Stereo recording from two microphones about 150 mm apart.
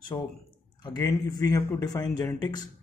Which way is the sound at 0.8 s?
25° left (ahead or behind).